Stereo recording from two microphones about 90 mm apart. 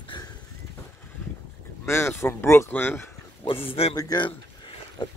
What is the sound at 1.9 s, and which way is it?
Speech, 30° left (ahead or behind).